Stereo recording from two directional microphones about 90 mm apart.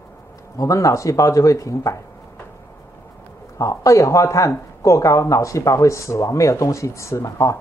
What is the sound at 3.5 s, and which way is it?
Speech, 40° left (ahead or behind).